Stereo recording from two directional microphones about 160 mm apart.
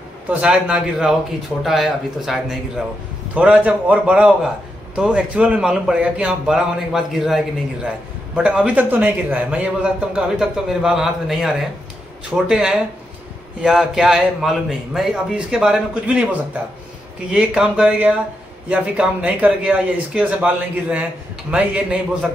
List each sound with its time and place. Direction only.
0.3 s a man's voice: 5° right (ahead or behind)
17.3 s speech: 5° right (ahead or behind)